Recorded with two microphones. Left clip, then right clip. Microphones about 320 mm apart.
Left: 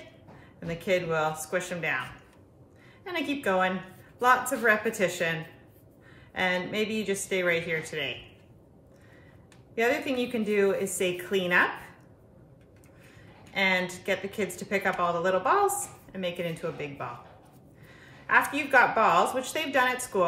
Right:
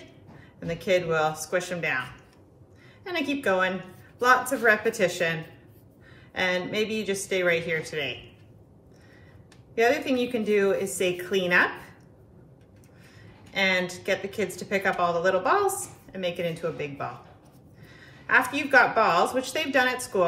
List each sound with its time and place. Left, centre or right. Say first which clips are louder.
0.6 s a woman's voice: right 3 dB; centre
9.8 s a woman's voice: right 4 dB; centre
13.5 s a woman's voice: right 2 dB; centre